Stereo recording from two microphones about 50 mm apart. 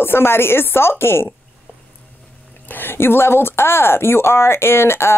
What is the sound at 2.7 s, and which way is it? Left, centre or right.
Speech, left.